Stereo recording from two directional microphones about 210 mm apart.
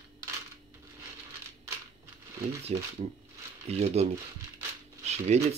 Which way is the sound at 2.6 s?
30° right (ahead or behind).